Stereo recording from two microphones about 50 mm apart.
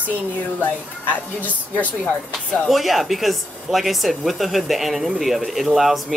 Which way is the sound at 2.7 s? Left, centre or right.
Centre.